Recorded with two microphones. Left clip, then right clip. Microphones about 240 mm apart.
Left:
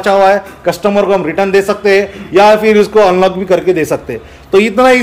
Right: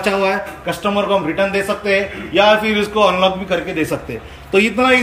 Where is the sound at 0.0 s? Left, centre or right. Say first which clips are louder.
Left 9 dB; centre.